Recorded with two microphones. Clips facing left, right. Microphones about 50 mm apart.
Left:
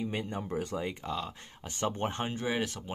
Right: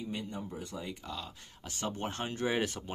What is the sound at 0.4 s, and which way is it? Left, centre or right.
Speech, left.